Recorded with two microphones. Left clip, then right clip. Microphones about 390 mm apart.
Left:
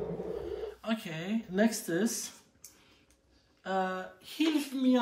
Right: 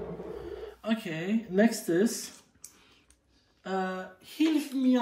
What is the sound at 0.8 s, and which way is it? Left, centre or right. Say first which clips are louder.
Speech: right 3 dB; centre.